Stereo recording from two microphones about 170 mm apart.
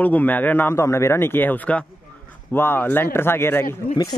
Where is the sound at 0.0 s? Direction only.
10° left (ahead or behind).